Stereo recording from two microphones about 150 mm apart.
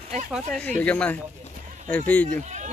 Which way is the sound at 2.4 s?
50° right (ahead or behind).